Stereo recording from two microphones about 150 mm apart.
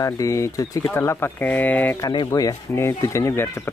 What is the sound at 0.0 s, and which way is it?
Speech, 20° left (ahead or behind).